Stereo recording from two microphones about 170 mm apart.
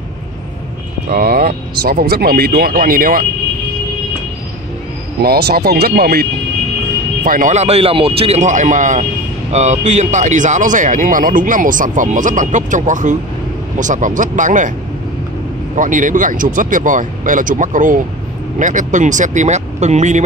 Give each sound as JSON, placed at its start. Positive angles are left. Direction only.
{"t": 1.1, "sound": "speech", "side_deg": -60}
{"t": 5.2, "sound": "speech", "side_deg": -65}
{"t": 7.2, "sound": "speech", "side_deg": -50}
{"t": 15.7, "sound": "speech", "side_deg": -50}